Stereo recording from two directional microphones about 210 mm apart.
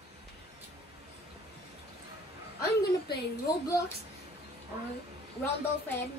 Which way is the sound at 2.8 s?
50° left (ahead or behind).